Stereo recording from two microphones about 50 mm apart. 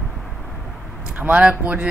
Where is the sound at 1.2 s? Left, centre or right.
Right.